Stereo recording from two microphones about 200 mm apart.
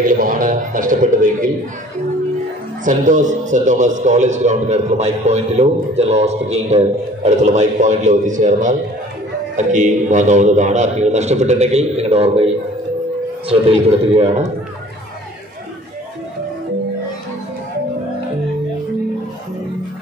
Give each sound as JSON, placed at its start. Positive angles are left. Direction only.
{"t": 0.0, "sound": "a man's voice", "side_deg": -45}
{"t": 2.8, "sound": "a man's voice", "side_deg": -40}
{"t": 13.5, "sound": "a man's voice", "side_deg": -30}